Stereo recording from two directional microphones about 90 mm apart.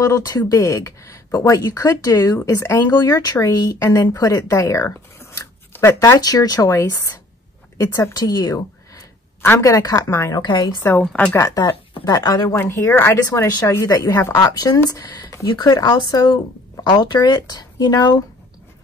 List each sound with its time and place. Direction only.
0.0 s speech: 45° left (ahead or behind)
3.0 s speech: 45° left (ahead or behind)
6.1 s speech: 45° left (ahead or behind)
8.9 s speech: 30° left (ahead or behind)
10.3 s speech: 55° left (ahead or behind)
10.8 s a woman's voice: 25° left (ahead or behind)
11.3 s speech: 40° left (ahead or behind)
12.5 s a woman's voice: 30° left (ahead or behind); by 18.2 s 50° left (ahead or behind)